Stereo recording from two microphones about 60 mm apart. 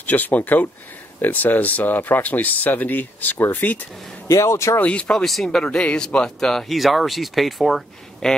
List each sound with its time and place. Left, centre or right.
0.0 s speech: left
4.3 s speech: left
4.7 s speech: left
5.2 s speech: centre